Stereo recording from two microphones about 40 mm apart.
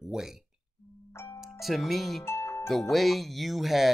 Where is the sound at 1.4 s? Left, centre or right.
Centre.